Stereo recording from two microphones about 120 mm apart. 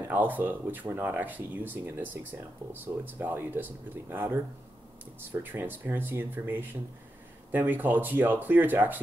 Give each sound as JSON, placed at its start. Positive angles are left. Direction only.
{"t": 0.1, "sound": "speech", "side_deg": -15}